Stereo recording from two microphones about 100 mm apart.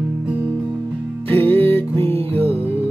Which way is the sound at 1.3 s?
20° left (ahead or behind).